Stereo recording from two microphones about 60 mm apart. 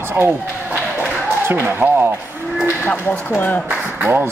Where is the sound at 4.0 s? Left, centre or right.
Right.